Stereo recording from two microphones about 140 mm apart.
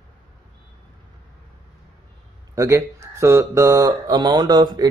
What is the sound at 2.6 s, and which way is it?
Speech, 20° right (ahead or behind).